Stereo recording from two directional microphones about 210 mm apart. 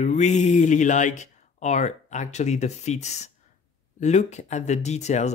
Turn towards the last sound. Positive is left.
turn(degrees=30)  # may be behind; listen again after turning